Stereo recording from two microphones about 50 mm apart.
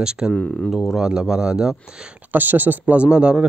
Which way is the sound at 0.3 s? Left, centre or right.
Left.